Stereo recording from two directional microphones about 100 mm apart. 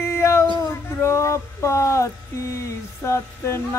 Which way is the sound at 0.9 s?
25° left (ahead or behind).